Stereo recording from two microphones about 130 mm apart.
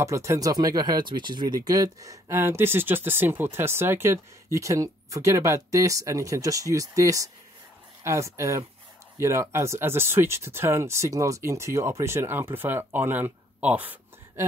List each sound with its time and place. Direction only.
0.0 s speech: 25° right (ahead or behind)